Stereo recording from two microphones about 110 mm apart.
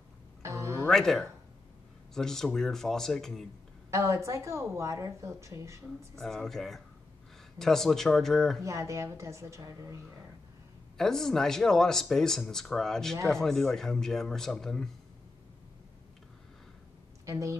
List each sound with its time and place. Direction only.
0.4 s music: 25° right (ahead or behind)
0.8 s speech: 5° left (ahead or behind)
3.9 s a woman's voice: 30° right (ahead or behind)
6.1 s speech: 5° left (ahead or behind)
8.6 s a woman's voice: 25° right (ahead or behind)
11.0 s speech: 5° left (ahead or behind)
17.3 s a woman's voice: 25° right (ahead or behind)